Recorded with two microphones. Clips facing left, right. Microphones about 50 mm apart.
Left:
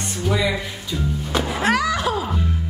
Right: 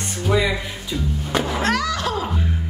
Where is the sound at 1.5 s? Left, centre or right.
Centre.